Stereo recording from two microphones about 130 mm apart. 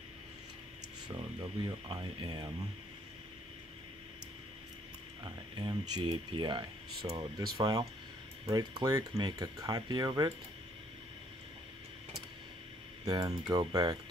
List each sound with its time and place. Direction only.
1.0 s speech: 30° right (ahead or behind)
5.2 s speech: 30° right (ahead or behind)
13.0 s speech: 30° right (ahead or behind)